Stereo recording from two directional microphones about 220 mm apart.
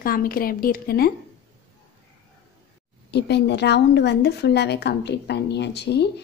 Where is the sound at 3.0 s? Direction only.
50° left (ahead or behind).